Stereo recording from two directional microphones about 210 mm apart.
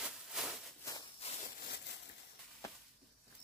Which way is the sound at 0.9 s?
15° left (ahead or behind).